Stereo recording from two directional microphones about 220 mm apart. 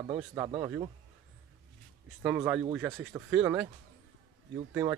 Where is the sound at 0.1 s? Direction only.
15° right (ahead or behind).